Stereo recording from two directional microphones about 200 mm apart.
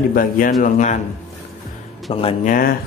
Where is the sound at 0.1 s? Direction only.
45° left (ahead or behind).